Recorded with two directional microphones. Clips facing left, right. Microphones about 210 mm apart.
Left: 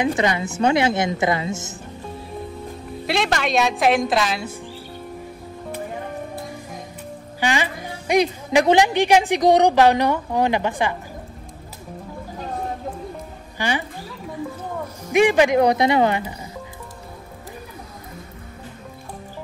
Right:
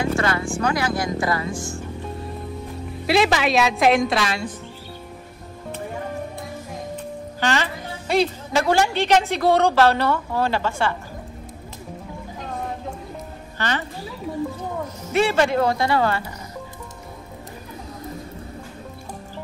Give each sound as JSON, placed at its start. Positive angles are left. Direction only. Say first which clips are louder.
{"t": 0.0, "sound": "speech", "louder": "left 2 dB", "side_deg": 20}
{"t": 3.1, "sound": "a woman's voice", "louder": "right 3 dB", "side_deg": 0}
{"t": 7.3, "sound": "speech", "louder": "left 1 dB", "side_deg": 15}
{"t": 13.6, "sound": "speech", "louder": "left 2 dB", "side_deg": 10}
{"t": 15.0, "sound": "speech", "louder": "left 4 dB", "side_deg": 15}